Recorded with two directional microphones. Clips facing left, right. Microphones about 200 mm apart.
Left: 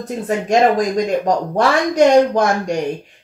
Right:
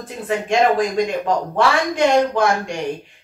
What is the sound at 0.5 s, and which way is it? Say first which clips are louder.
Speech: left 3 dB; 40° left (ahead or behind).